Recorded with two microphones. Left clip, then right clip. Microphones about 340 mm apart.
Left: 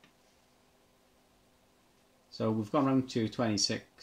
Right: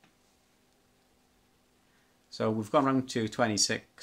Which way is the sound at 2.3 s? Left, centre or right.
Right.